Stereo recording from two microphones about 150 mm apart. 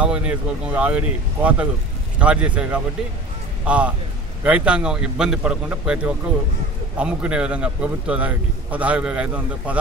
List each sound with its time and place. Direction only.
0.0 s a man's voice: 10° right (ahead or behind)